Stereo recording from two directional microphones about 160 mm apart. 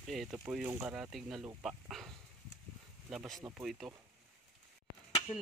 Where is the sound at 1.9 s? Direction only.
Centre (ahead or behind).